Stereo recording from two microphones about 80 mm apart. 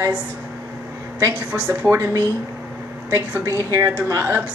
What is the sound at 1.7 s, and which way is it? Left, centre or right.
Speech, right.